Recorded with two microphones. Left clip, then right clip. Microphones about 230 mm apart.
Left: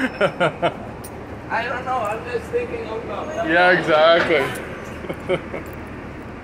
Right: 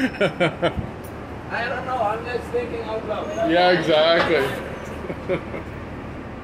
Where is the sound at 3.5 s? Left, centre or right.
Centre.